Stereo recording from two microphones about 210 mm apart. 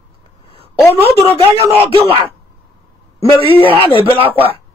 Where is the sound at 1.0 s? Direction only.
25° right (ahead or behind).